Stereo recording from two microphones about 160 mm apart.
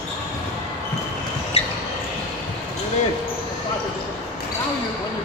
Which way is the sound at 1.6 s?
40° left (ahead or behind).